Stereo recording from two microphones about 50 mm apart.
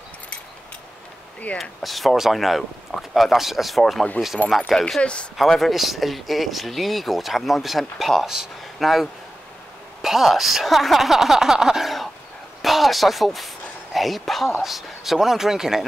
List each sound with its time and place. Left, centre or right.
1.6 s speech: centre
4.2 s speech: left
4.6 s speech: centre